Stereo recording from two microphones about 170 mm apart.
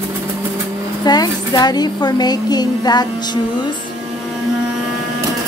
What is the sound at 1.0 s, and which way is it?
A woman's voice, 25° left (ahead or behind).